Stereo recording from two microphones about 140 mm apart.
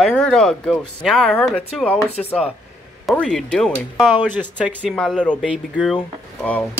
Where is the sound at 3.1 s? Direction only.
5° left (ahead or behind).